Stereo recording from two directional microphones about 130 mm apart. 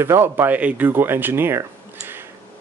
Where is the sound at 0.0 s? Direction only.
20° right (ahead or behind).